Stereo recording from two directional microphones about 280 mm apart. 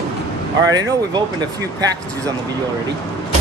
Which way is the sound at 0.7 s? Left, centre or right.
Centre.